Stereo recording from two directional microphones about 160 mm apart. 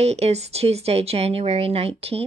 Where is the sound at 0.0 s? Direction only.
40° right (ahead or behind).